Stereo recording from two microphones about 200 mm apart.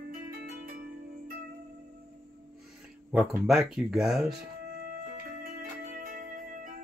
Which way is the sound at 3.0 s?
5° right (ahead or behind).